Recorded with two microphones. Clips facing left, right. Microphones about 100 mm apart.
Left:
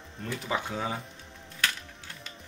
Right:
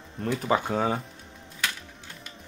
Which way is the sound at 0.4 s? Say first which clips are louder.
Right 6 dB; 50° right (ahead or behind).